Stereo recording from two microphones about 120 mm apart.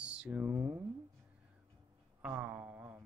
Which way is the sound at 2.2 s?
10° right (ahead or behind).